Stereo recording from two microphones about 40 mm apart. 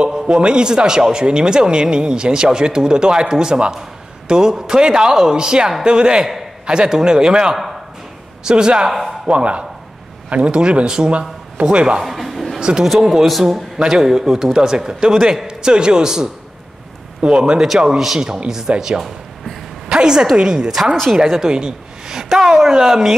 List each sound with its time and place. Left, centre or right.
0.3 s speech: right
7.5 s a sound: centre
8.5 s speech: centre
8.9 s a sound: centre
9.3 s a man's voice: right
12.0 s music: centre
12.5 s a sound: centre
12.8 s speech: centre
13.7 s speech: centre
17.7 s a woman's voice: centre
20.9 s speech: centre
21.5 s speech: centre